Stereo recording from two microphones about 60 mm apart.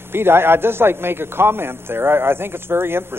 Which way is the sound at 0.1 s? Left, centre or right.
Right.